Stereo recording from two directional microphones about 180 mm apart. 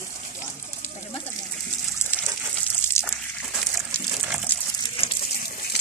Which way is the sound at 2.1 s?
10° left (ahead or behind).